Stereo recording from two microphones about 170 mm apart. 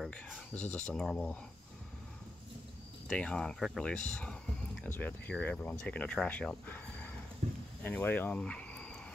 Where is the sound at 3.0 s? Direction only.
5° left (ahead or behind).